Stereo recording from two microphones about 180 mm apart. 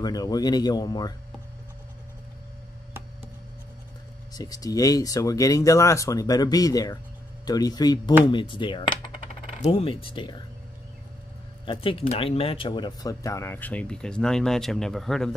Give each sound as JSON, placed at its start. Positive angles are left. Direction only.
{"t": 0.0, "sound": "speech", "side_deg": 20}
{"t": 4.3, "sound": "speech", "side_deg": 20}
{"t": 8.3, "sound": "coin", "side_deg": 25}
{"t": 9.6, "sound": "speech", "side_deg": 35}
{"t": 11.6, "sound": "speech", "side_deg": 30}